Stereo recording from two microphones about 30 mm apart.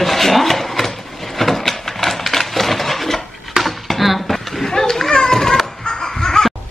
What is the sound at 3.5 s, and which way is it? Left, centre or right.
Chop, centre.